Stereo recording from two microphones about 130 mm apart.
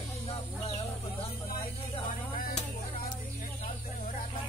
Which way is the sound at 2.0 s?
90° left.